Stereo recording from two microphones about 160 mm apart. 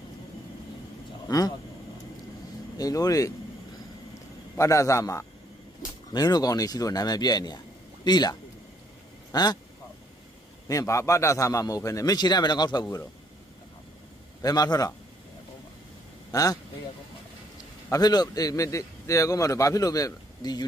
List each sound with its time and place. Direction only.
2.8 s a man's voice: 20° left (ahead or behind)
4.6 s a man's voice: 20° left (ahead or behind)
10.7 s a man's voice: 20° left (ahead or behind)
14.4 s a man's voice: 25° left (ahead or behind)
16.3 s a man's voice: 25° left (ahead or behind)
17.8 s a man's voice: 20° left (ahead or behind)